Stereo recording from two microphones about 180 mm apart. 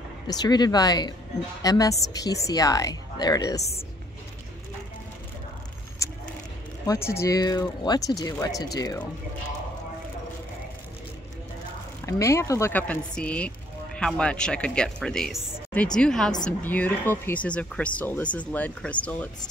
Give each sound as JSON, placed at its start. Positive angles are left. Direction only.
{"t": 0.3, "sound": "speech", "side_deg": 20}
{"t": 6.0, "sound": "a sound", "side_deg": 15}
{"t": 6.9, "sound": "speech", "side_deg": 15}
{"t": 12.1, "sound": "speech", "side_deg": 15}